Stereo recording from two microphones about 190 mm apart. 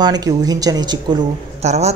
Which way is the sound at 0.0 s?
20° right (ahead or behind).